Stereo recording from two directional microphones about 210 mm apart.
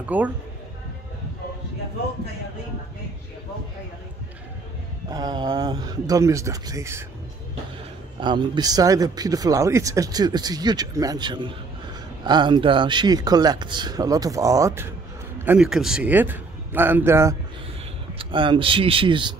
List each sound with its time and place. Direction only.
0.0 s speech: 10° right (ahead or behind)
5.1 s speech: 20° right (ahead or behind)
8.2 s a man's voice: 20° right (ahead or behind)
18.1 s speech: 25° right (ahead or behind)